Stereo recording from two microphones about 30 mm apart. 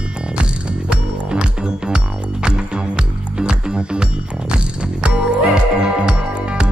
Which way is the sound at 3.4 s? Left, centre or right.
Right.